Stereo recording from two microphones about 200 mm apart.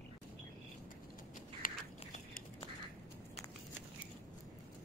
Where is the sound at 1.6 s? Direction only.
45° left (ahead or behind).